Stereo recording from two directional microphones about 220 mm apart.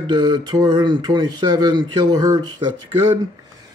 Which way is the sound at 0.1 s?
20° right (ahead or behind).